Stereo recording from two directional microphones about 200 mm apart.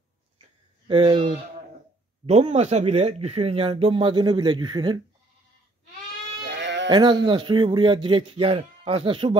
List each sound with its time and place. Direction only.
0.8 s speech: 25° right (ahead or behind)
6.4 s sheep: 60° right (ahead or behind)
6.9 s speech: 25° right (ahead or behind)